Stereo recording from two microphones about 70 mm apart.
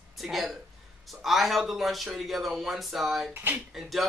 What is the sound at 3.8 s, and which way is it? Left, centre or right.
Speech, centre.